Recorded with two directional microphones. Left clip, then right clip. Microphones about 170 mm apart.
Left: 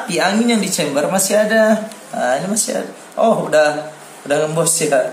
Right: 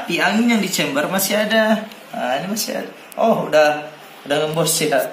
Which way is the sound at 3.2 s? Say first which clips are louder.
Left 1 dB; 15° left (ahead or behind).